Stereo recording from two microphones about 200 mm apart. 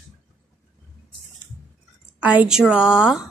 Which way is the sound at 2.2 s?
5° right (ahead or behind).